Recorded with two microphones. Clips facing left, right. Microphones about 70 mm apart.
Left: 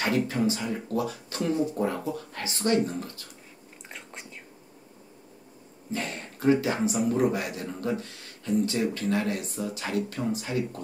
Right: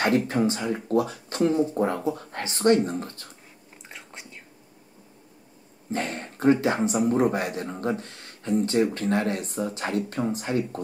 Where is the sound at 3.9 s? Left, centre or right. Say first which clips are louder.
Even; centre.